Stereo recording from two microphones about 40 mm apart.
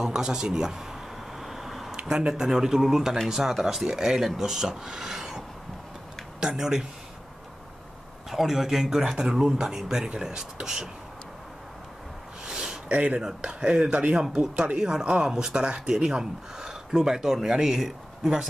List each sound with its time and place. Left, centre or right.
0.0 s speech: centre
1.4 s a sound: centre
2.0 s speech: centre
6.4 s speech: centre
8.3 s speech: centre
12.4 s a sound: centre
12.8 s speech: right
13.2 s speech: centre